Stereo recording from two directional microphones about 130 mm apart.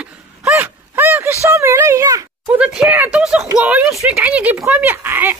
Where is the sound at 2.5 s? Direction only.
5° right (ahead or behind).